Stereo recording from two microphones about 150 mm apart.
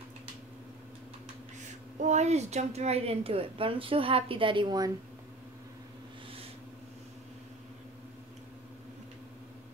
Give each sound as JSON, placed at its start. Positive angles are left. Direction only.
{"t": 2.0, "sound": "a woman's voice", "side_deg": -50}